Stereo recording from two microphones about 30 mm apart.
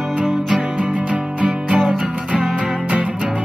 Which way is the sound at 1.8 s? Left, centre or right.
Right.